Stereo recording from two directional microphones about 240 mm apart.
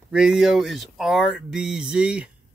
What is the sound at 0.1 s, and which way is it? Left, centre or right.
Speech, centre.